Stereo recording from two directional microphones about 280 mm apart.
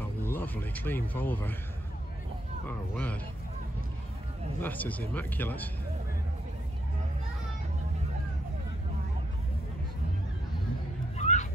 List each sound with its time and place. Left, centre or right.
0.3 s speech: centre
2.6 s speech: centre
4.6 s speech: centre
11.1 s hubbub: left